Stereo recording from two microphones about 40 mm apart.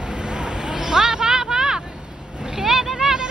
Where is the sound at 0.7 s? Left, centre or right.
Centre.